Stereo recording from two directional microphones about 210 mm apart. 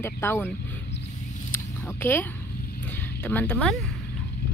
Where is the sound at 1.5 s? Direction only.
10° left (ahead or behind).